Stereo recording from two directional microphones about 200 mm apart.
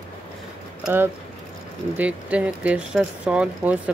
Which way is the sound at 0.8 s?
10° right (ahead or behind).